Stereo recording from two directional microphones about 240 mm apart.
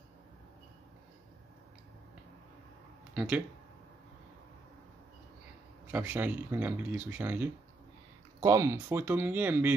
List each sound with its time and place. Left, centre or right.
3.2 s speech: centre
5.9 s speech: centre